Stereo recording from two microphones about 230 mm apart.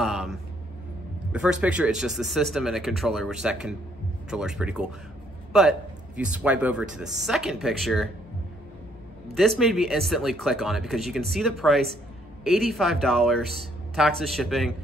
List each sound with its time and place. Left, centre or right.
0.0 s a sound: centre
1.3 s a man's voice: centre
9.4 s a man's voice: centre